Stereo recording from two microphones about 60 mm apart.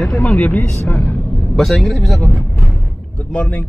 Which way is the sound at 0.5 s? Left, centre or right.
Left.